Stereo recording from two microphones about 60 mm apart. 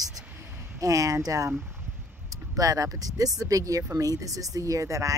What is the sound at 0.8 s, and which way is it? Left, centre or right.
Speech, right.